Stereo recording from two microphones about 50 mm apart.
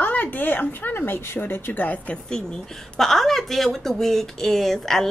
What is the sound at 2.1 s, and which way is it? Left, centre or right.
A woman's voice, centre.